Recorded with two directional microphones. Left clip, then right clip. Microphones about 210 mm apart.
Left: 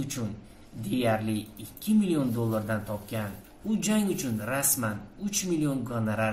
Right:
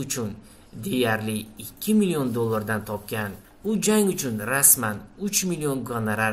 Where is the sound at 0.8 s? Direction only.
50° right (ahead or behind).